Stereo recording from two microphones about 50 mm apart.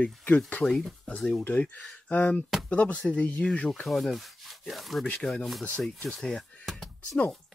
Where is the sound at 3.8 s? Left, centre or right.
Centre.